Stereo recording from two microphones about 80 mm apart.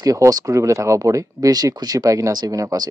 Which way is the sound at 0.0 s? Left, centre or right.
Right.